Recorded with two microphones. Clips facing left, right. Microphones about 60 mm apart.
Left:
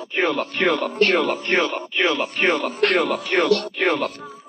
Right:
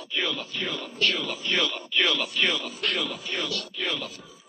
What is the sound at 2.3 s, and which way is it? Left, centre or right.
Speech, left.